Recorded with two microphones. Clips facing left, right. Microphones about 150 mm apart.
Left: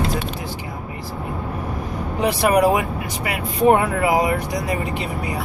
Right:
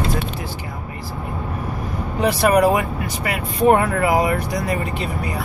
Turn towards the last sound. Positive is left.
turn(degrees=15)  # may be behind; listen again after turning